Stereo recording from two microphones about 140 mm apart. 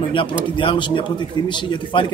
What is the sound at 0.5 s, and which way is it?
A man's voice, 35° left (ahead or behind).